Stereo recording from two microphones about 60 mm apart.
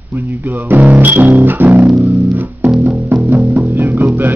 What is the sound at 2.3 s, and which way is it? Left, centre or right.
Music, right.